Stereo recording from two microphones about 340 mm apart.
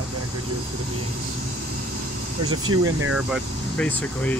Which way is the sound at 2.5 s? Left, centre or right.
Right.